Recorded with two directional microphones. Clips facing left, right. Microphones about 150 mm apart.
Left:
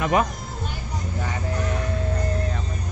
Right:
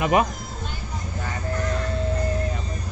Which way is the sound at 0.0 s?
10° right (ahead or behind).